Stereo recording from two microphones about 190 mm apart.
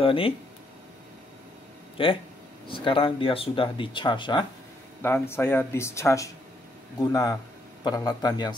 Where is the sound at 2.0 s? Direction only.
30° left (ahead or behind).